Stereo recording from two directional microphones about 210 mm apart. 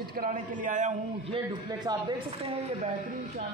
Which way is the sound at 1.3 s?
20° right (ahead or behind).